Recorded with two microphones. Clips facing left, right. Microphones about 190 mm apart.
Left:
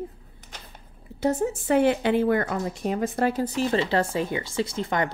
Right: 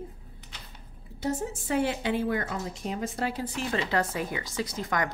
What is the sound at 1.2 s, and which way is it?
A woman's voice, 60° left (ahead or behind).